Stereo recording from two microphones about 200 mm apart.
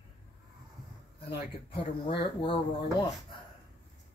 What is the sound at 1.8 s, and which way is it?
Speech, 25° left (ahead or behind).